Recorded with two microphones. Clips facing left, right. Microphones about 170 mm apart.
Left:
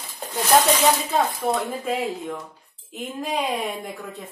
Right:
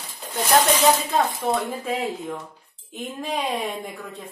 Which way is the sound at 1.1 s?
Centre (ahead or behind).